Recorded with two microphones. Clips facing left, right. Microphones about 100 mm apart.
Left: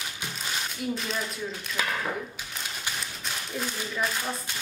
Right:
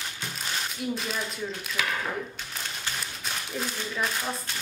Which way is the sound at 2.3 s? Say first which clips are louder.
Even; centre (ahead or behind).